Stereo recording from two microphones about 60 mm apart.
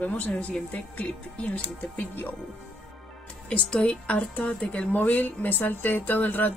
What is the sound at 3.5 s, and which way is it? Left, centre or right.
A woman's voice, centre.